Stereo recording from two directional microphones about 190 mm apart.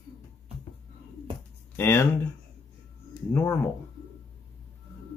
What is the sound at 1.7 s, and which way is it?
Speech, 15° left (ahead or behind).